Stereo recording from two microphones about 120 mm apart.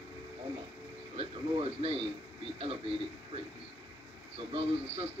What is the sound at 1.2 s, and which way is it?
Speech, 50° right (ahead or behind).